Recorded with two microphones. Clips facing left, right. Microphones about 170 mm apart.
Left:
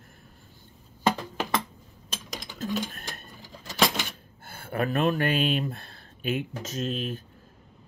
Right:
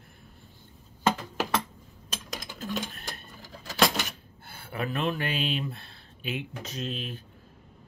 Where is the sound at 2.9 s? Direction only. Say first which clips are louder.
Even; 45° left (ahead or behind).